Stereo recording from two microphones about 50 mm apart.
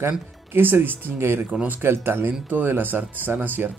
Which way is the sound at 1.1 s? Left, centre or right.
Right.